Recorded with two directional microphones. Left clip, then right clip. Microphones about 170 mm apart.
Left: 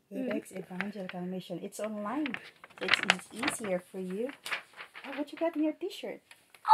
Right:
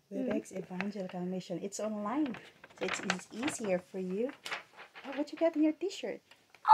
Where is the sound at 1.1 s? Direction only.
5° right (ahead or behind).